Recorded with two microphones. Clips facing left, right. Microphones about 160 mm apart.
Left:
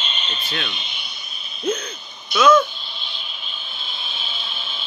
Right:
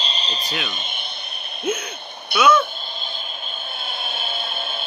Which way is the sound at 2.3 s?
10° right (ahead or behind).